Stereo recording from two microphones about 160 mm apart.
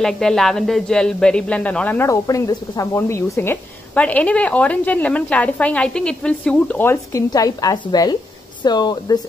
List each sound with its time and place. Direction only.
0.0 s speech: 5° left (ahead or behind)
2.0 s a woman's voice: 20° left (ahead or behind)